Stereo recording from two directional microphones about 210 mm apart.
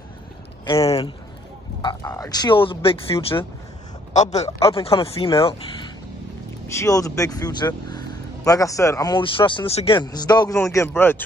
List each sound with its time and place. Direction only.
0.7 s a man's voice: 25° left (ahead or behind)
6.7 s speech: 15° left (ahead or behind)